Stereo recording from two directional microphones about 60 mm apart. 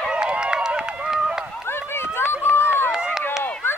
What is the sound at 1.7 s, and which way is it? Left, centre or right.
Run, left.